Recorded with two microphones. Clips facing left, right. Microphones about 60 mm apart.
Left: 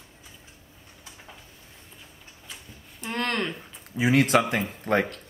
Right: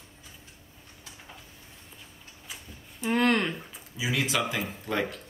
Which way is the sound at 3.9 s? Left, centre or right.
Left.